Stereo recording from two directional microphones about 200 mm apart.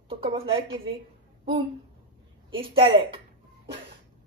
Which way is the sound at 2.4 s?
25° right (ahead or behind).